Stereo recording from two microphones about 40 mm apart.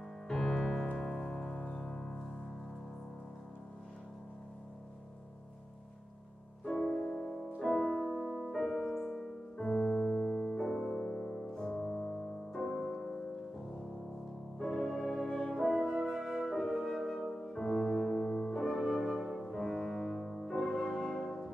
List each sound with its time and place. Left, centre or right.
0.4 s piano: centre
0.9 s music: centre
6.7 s music: centre
7.0 s music: centre
8.2 s music: centre
10.9 s music: left
11.8 s music: centre
14.6 s music: centre
15.1 s brass instrument: centre
15.5 s french horn: centre
16.3 s music: centre